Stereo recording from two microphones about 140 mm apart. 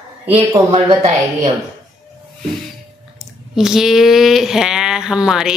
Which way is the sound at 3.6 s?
5° right (ahead or behind).